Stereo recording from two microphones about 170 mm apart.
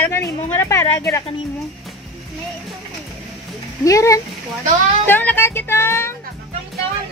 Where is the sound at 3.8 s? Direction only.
20° left (ahead or behind).